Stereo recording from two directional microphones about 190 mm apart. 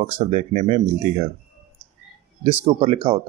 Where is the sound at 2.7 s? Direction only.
30° right (ahead or behind).